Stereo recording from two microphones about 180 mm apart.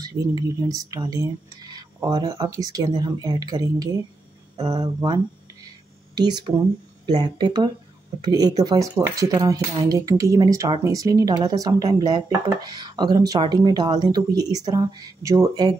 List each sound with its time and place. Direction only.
0.0 s speech: 20° right (ahead or behind)